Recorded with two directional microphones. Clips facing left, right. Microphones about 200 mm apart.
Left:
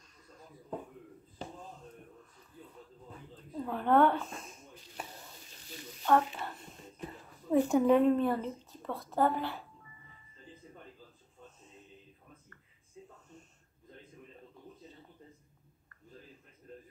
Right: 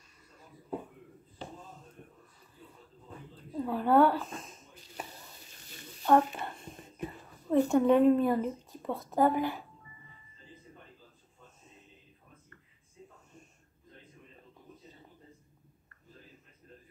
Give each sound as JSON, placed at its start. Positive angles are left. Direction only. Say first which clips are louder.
{"t": 3.5, "sound": "speech", "louder": "right 2 dB", "side_deg": -5}
{"t": 6.0, "sound": "speech", "louder": "right 3 dB", "side_deg": -20}
{"t": 7.5, "sound": "a woman's voice", "louder": "right 1 dB", "side_deg": 5}